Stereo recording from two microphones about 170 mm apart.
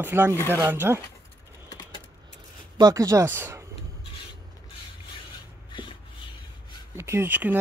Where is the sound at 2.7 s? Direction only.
20° right (ahead or behind).